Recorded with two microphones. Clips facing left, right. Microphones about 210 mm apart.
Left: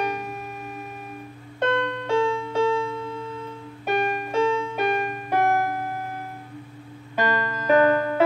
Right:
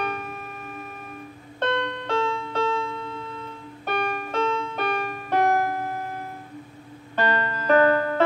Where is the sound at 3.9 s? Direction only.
45° left (ahead or behind).